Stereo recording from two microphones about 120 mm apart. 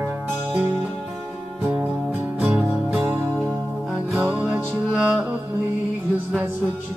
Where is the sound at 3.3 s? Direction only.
Centre (ahead or behind).